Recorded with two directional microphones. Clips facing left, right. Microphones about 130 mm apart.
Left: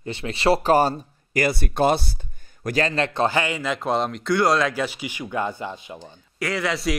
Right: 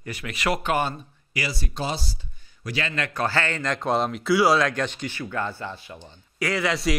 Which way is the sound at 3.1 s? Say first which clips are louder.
Left 1 dB; 15° left (ahead or behind).